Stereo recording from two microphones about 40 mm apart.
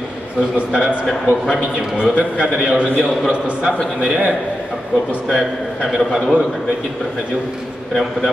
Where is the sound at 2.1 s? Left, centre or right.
Right.